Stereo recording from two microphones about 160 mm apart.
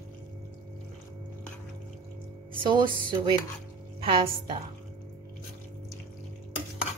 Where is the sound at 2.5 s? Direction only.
30° right (ahead or behind).